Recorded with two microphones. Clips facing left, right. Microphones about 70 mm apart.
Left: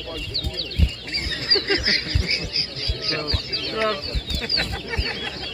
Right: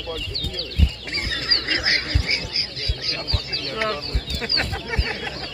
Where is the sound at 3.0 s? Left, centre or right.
Left.